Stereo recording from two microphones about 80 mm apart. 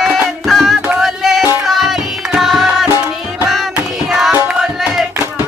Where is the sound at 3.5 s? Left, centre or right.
Centre.